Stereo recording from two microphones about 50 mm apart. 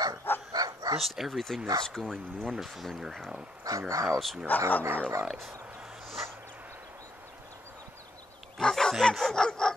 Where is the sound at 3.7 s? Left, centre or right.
Right.